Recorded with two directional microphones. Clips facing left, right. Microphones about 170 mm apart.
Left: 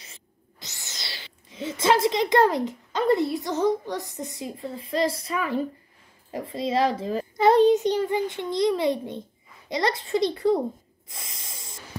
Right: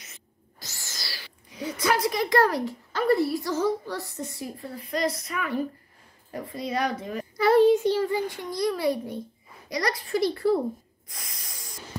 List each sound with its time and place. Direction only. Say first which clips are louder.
0.0 s a sound: left 1 dB; 30° left (ahead or behind)
0.7 s a child's voice: left 1 dB; 20° left (ahead or behind)
11.1 s snort: left 2 dB; 25° left (ahead or behind)